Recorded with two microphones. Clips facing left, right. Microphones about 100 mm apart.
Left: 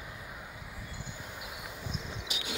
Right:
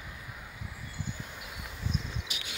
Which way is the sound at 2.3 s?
15° left (ahead or behind).